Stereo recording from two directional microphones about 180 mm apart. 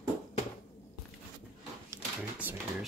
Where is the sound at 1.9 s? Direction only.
10° right (ahead or behind).